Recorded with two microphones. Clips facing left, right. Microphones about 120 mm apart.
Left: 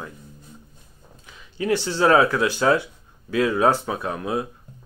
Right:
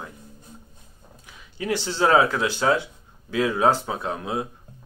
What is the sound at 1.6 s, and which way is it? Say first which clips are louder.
Speech: left 3 dB; 15° right (ahead or behind).